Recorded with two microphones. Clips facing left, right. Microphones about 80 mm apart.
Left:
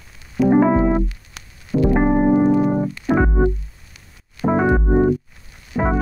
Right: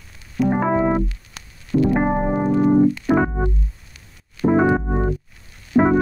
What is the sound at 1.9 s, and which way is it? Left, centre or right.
Keyboard, centre.